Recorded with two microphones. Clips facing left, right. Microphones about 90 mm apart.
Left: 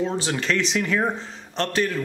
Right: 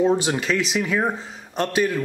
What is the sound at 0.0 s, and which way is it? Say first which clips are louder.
Speech: right 5 dB; 15° right (ahead or behind).